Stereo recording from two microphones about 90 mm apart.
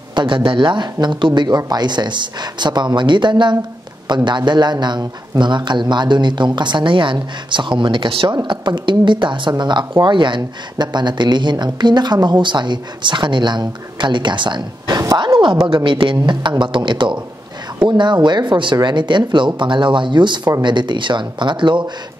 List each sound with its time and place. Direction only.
0.1 s speech: 60° right (ahead or behind)